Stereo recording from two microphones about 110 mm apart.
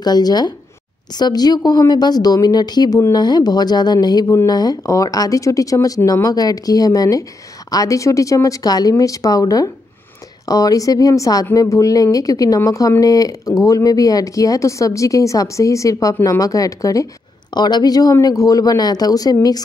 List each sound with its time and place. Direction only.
0.0 s speech: 40° left (ahead or behind)